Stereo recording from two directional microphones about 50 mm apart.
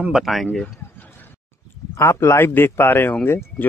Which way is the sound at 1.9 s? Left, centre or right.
Left.